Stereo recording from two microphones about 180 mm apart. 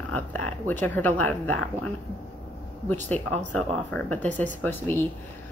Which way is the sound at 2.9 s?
10° left (ahead or behind).